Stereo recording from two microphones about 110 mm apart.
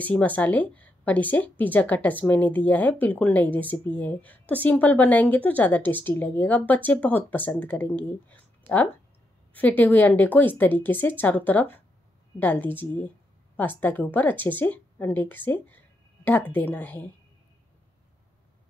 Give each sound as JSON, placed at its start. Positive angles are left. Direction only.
{"t": 0.0, "sound": "a woman's voice", "side_deg": 15}